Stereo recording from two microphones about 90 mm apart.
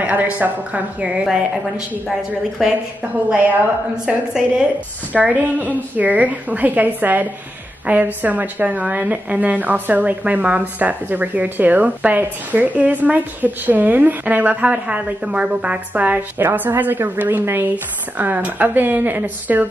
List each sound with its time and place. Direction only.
0.0 s a woman's voice: 20° right (ahead or behind)
2.6 s a woman's voice: 5° right (ahead or behind)
3.9 s a woman's voice: 10° right (ahead or behind)